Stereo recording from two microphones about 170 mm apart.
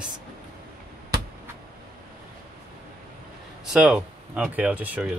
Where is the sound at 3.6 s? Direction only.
5° right (ahead or behind).